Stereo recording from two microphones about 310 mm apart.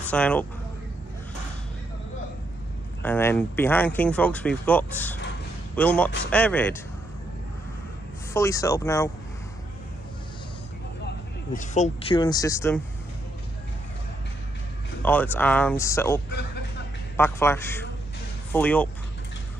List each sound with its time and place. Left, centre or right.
0.1 s speech: centre
3.0 s speech: centre
8.3 s speech: centre
11.5 s speech: left
15.0 s speech: centre
17.2 s speech: centre